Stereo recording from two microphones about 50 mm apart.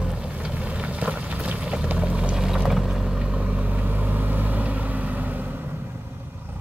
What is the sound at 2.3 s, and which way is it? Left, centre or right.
Vehicle, centre.